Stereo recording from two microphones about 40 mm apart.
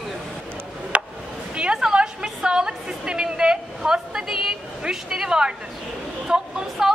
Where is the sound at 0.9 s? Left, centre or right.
Right; by 4.5 s centre.